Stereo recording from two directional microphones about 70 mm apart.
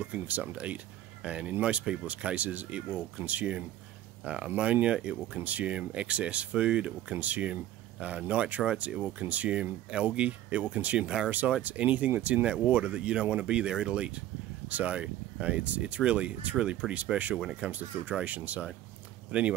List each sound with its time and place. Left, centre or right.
0.0 s speech: centre
8.9 s speech: centre
9.3 s speech: centre